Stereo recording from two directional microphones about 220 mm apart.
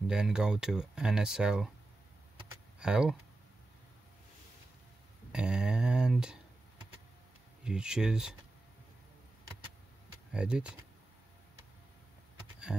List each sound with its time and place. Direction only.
0.0 s speech: 5° right (ahead or behind)
2.8 s speech: 5° right (ahead or behind)
5.3 s speech: 5° right (ahead or behind)
7.6 s speech: 5° right (ahead or behind)
10.3 s speech: 5° right (ahead or behind)